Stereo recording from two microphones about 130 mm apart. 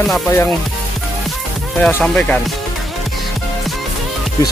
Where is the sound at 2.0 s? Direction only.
5° left (ahead or behind).